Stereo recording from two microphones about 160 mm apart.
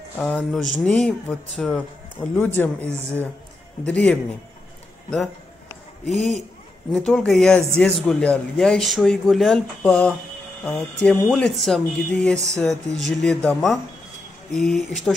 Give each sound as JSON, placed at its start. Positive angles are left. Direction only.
{"t": 0.2, "sound": "speech", "side_deg": 5}
{"t": 6.1, "sound": "a man's voice", "side_deg": -45}
{"t": 6.9, "sound": "speech", "side_deg": 0}